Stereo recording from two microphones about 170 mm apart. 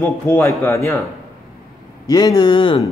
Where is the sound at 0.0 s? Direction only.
15° left (ahead or behind).